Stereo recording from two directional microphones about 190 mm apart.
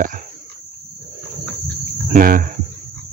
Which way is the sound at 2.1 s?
45° right (ahead or behind).